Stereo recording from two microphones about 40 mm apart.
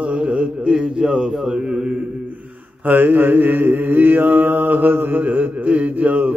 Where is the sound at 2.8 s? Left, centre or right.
Right.